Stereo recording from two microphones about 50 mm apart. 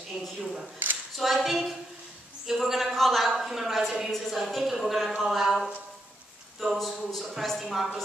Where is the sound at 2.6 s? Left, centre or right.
Centre.